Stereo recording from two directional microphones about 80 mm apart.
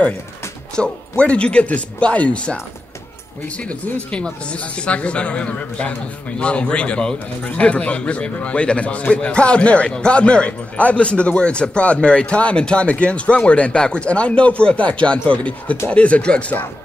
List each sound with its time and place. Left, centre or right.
0.7 s speech: centre